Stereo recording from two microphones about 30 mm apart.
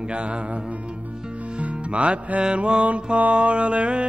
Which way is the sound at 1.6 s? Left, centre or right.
Right.